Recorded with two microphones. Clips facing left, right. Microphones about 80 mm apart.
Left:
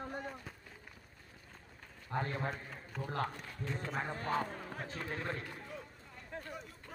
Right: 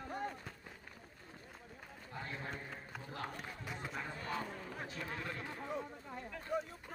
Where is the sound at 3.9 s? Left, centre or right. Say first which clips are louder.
Left 7 dB; left.